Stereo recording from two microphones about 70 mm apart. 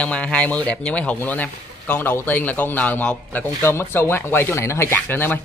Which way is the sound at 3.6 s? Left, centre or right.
Left.